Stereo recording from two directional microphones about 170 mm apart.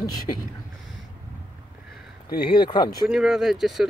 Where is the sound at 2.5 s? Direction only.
25° left (ahead or behind).